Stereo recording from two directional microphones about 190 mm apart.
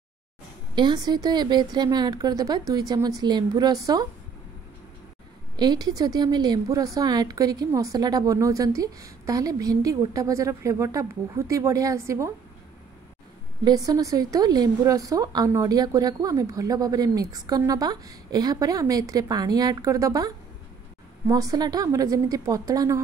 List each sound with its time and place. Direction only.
0.7 s a woman's voice: 20° right (ahead or behind)
5.6 s a woman's voice: 20° right (ahead or behind)
13.7 s a woman's voice: 20° right (ahead or behind)